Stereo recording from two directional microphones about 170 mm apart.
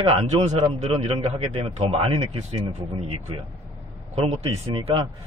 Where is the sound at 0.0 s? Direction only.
35° right (ahead or behind).